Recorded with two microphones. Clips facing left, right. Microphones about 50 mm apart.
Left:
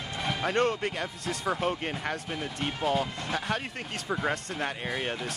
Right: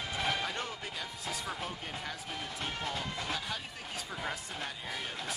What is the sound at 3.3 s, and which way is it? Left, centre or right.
Speech, left.